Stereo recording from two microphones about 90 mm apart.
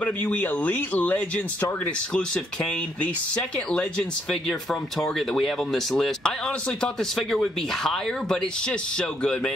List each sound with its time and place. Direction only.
0.0 s speech: 15° left (ahead or behind)